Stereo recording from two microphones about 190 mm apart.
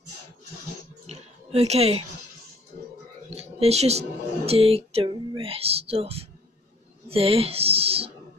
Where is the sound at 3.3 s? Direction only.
35° right (ahead or behind).